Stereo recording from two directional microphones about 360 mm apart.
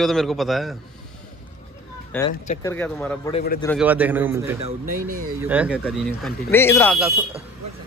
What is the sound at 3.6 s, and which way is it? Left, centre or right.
A man's voice, centre.